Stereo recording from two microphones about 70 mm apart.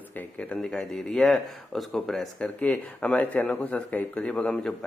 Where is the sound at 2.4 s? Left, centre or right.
Left.